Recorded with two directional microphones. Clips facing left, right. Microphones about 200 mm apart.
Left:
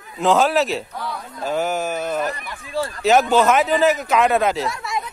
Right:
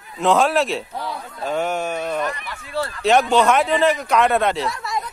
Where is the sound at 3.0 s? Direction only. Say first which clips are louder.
Left 1 dB; centre (ahead or behind).